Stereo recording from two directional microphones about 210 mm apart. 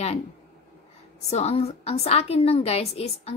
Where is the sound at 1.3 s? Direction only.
30° left (ahead or behind).